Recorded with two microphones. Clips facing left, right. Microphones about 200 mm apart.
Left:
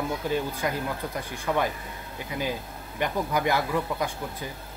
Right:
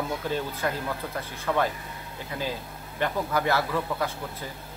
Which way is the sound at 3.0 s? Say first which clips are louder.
Even; 15° left (ahead or behind).